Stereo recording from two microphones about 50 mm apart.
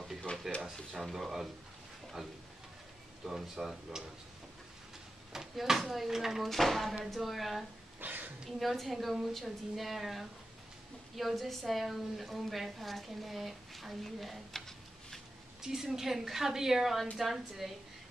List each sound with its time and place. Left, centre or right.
0.0 s a sound: centre
1.1 s a woman's voice: centre
3.3 s a woman's voice: centre
5.3 s a woman's voice: centre
8.0 s a sound: right
8.5 s a woman's voice: centre
15.6 s a woman's voice: centre